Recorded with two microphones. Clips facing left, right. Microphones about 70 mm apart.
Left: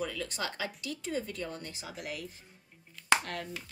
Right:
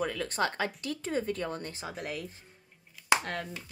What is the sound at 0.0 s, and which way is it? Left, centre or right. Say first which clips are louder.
Speech: right 5 dB; right.